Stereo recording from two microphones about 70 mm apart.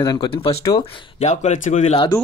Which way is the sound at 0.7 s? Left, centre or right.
Left.